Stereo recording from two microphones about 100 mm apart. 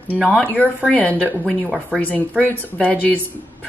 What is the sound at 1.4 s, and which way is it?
Speech, 10° right (ahead or behind).